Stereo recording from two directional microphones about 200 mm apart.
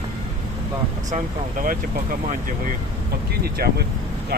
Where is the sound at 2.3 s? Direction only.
45° right (ahead or behind).